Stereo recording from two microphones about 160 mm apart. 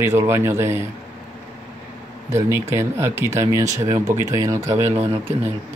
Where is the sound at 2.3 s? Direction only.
15° right (ahead or behind).